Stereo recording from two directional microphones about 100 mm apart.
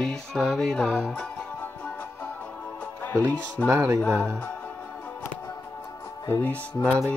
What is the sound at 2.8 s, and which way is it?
Music, 15° left (ahead or behind).